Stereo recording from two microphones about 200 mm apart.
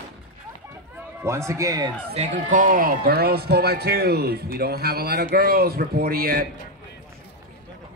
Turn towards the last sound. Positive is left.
turn(degrees=-50)  # may be behind; listen again after turning